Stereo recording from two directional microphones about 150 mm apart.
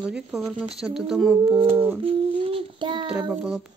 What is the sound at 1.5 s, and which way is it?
Child singing, 35° right (ahead or behind).